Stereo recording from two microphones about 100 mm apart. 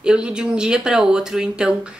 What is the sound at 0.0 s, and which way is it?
Speech, 10° right (ahead or behind).